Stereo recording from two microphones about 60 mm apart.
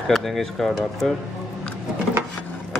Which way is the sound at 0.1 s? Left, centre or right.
Centre.